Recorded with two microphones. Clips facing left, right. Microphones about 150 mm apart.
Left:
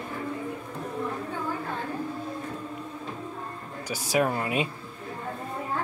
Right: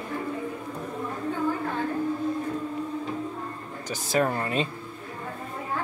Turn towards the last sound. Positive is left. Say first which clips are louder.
# even
turn(degrees=10)  # may be behind; listen again after turning